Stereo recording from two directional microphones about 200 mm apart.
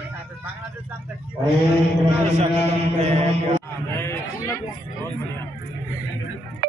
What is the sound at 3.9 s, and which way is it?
Speech, 10° left (ahead or behind).